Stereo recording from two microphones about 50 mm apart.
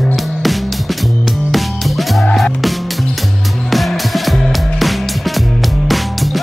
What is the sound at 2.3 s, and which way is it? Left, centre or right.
Music, centre.